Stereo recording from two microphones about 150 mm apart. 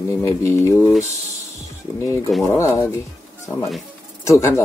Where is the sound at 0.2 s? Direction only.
20° left (ahead or behind).